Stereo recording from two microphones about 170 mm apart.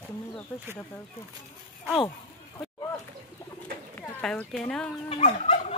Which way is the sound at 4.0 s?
10° left (ahead or behind).